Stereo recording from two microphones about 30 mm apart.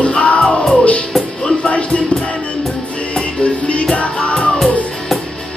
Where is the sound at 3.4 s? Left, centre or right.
Left.